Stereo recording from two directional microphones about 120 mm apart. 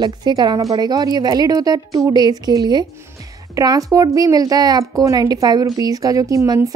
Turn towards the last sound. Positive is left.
turn(degrees=-25)  # may be behind; listen again after turning